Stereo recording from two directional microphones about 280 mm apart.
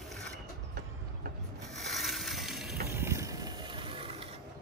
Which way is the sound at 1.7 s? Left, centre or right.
Centre.